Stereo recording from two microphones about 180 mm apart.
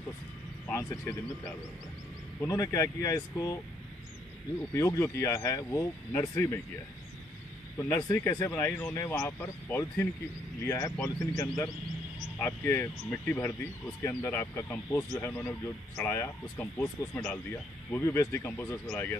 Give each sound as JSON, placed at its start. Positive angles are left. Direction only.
{"t": 0.7, "sound": "speech", "side_deg": 15}
{"t": 2.4, "sound": "speech", "side_deg": 20}
{"t": 4.7, "sound": "speech", "side_deg": 15}
{"t": 7.7, "sound": "speech", "side_deg": 15}
{"t": 12.4, "sound": "speech", "side_deg": 15}